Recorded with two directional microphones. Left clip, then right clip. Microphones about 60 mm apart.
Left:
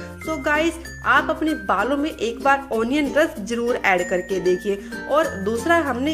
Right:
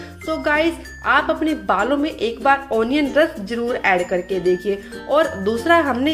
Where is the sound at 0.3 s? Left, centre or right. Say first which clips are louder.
Right 2 dB; left.